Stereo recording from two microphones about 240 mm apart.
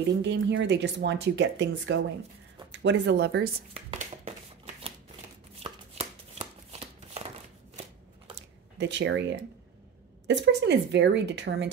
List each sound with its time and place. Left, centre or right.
0.2 s speech: right
5.6 s chopping: right
8.7 s speech: right